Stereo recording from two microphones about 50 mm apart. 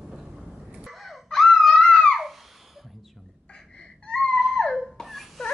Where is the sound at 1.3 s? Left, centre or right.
Centre.